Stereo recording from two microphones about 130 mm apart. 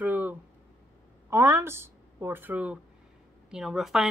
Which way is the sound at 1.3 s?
20° right (ahead or behind).